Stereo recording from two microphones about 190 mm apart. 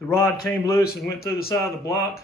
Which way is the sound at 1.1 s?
55° left (ahead or behind).